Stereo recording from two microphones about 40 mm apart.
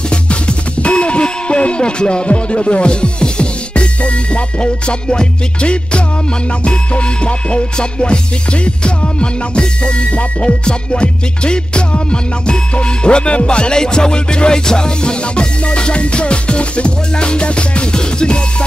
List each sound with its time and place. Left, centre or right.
0.1 s music: left